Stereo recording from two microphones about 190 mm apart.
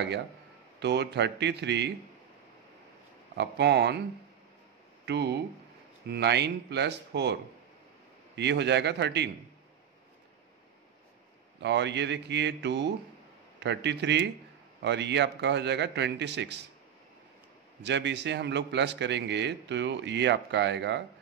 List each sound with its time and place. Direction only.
0.7 s a man's voice: 65° right (ahead or behind)
3.3 s a man's voice: 65° right (ahead or behind)
5.0 s a man's voice: 60° right (ahead or behind)
8.4 s a man's voice: 65° right (ahead or behind)
11.6 s a man's voice: 65° right (ahead or behind)
17.8 s a man's voice: 65° right (ahead or behind)